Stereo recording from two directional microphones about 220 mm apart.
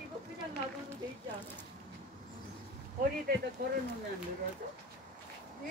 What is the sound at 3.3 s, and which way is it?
Speech, 40° right (ahead or behind).